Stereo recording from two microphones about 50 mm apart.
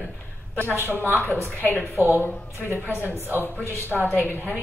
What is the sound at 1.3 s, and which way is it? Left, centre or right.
Speech, left.